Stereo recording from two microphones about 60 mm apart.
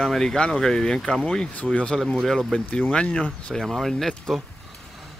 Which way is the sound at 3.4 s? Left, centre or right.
Centre.